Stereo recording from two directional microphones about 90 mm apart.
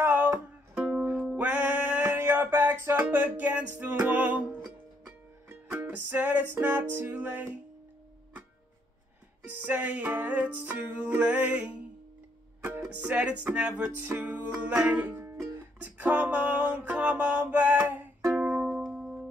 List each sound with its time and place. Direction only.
0.0 s music: 20° right (ahead or behind)
9.6 s music: 15° right (ahead or behind)
13.0 s music: 15° right (ahead or behind)